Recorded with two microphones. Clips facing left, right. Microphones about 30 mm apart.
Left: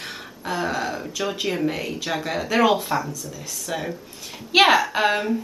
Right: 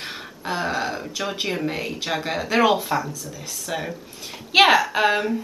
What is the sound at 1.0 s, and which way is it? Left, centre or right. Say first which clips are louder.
Speech: left 1 dB; centre.